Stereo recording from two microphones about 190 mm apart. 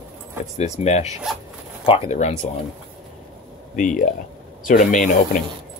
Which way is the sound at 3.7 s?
40° left (ahead or behind).